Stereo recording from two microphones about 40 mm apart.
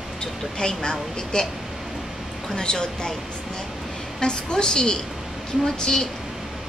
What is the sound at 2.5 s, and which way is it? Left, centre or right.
Speech, centre.